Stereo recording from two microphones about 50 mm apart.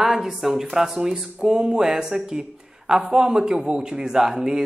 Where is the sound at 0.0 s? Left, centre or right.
Centre.